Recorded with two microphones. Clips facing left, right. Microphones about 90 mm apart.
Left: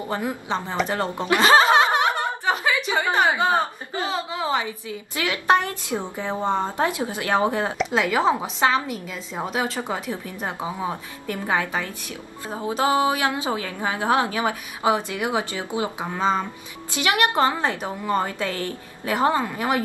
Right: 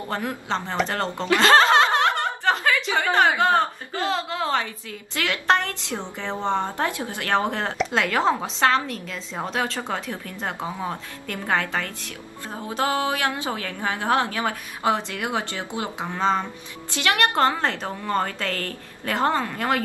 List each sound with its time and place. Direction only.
0.1 s a woman's voice: 10° left (ahead or behind)
0.8 s snicker: 15° left (ahead or behind)
2.9 s a woman's voice: 10° left (ahead or behind)